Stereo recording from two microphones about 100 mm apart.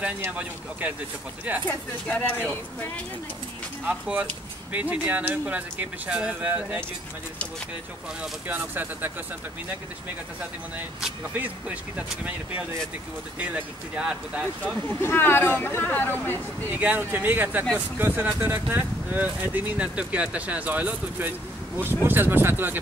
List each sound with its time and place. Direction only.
0.2 s speech: 15° right (ahead or behind)
2.0 s speech: 15° left (ahead or behind)
3.8 s speech: 15° right (ahead or behind)
8.2 s speech: 15° right (ahead or behind)
11.3 s speech: 15° right (ahead or behind)
13.4 s speech: 10° right (ahead or behind)
14.6 s speech: 20° left (ahead or behind)
16.7 s speech: 20° right (ahead or behind)